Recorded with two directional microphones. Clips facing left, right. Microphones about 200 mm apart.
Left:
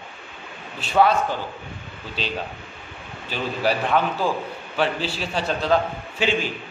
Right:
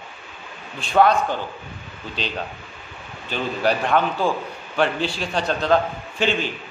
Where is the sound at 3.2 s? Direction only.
5° left (ahead or behind).